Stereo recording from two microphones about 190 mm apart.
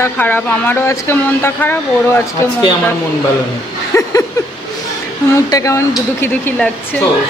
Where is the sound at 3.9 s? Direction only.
15° left (ahead or behind).